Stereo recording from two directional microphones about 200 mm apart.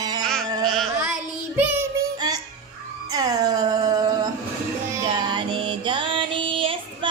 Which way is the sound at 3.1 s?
20° right (ahead or behind).